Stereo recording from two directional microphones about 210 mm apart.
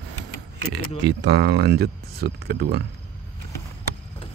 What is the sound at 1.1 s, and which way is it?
Speech, 50° right (ahead or behind).